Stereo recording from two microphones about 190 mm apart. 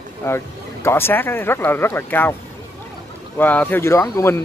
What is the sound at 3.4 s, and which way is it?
Speech, 10° left (ahead or behind).